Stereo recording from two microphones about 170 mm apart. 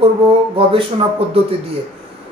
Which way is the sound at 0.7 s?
30° right (ahead or behind).